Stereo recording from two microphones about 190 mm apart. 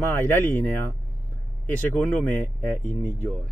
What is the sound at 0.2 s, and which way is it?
Speech, 10° left (ahead or behind).